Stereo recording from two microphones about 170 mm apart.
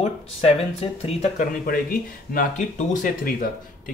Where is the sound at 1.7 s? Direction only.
55° left (ahead or behind).